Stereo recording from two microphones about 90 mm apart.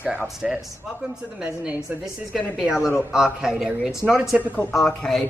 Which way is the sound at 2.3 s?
Centre (ahead or behind).